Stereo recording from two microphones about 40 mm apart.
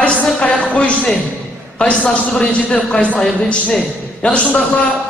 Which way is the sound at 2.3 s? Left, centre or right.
Left.